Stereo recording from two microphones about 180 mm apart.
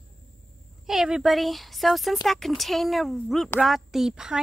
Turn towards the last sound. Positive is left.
turn(degrees=-5)  # may be behind; listen again after turning